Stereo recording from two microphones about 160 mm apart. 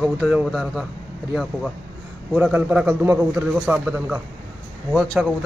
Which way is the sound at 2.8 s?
15° right (ahead or behind).